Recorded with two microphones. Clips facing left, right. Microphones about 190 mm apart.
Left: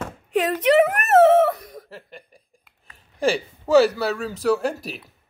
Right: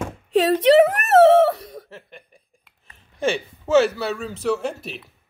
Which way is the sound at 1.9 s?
35° left (ahead or behind).